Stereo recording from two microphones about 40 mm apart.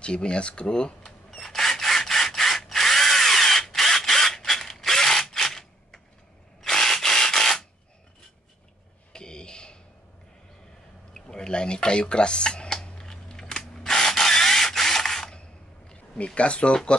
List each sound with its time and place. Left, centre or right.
0.0 s speech: left
1.4 s drill: centre
9.1 s a sound: left
11.1 s speech: centre
12.8 s rub: centre
16.2 s speech: left